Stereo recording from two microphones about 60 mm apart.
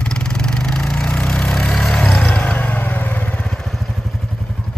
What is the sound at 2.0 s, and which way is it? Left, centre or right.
Vehicle, left.